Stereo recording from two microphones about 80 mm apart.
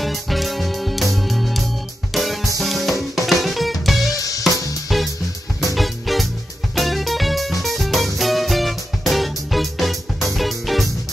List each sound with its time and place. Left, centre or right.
0.0 s music: centre
4.1 s music: left
4.8 s music: centre